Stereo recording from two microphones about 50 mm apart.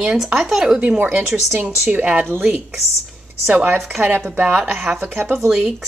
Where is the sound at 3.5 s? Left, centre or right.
Right.